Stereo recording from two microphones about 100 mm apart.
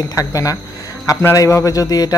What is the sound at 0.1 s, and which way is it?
Speech, 35° left (ahead or behind).